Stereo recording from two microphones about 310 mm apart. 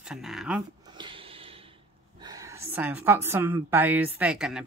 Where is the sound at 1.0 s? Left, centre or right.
Centre.